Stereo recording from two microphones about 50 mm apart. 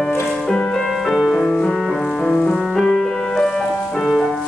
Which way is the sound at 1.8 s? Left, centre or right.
Centre.